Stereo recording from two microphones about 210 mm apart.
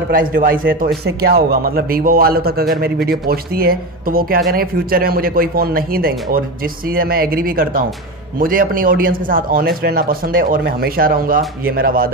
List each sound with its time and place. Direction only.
0.1 s speech: 45° right (ahead or behind)